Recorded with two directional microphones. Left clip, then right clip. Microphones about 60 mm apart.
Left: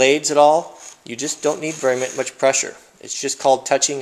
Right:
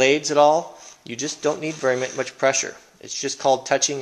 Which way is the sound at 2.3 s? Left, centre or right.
Left.